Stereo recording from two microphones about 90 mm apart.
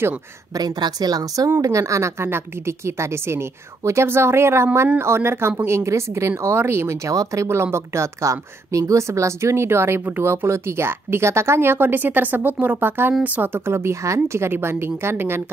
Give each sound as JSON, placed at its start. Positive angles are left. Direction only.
{"t": 0.6, "sound": "speech", "side_deg": -50}